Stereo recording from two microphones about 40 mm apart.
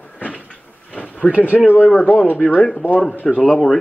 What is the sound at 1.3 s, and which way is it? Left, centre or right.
Speech, right.